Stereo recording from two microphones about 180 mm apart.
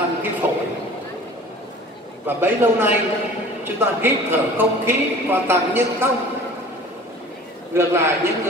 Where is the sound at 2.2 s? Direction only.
10° right (ahead or behind).